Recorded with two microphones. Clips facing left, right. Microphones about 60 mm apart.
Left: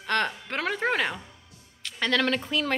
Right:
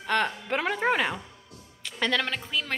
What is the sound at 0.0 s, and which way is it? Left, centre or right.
A woman's voice, centre.